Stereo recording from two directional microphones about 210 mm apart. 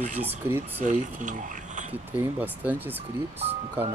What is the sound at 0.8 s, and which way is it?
Speech, 35° right (ahead or behind).